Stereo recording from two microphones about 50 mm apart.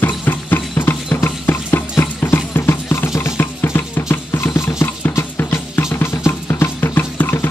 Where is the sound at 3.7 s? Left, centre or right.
Left.